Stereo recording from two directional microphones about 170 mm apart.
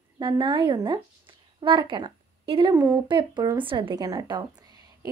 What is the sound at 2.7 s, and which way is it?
A woman's voice, 20° right (ahead or behind).